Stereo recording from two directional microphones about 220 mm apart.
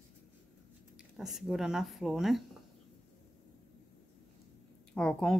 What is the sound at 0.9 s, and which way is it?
Speech, centre (ahead or behind).